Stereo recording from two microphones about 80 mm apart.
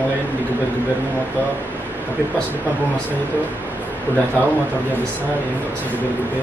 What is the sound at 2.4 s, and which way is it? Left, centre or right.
A woman's voice, right.